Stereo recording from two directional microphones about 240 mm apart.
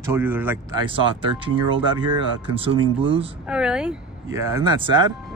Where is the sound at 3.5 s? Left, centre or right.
Centre.